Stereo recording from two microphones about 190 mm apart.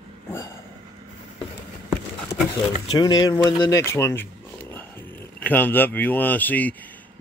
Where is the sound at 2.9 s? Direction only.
20° left (ahead or behind).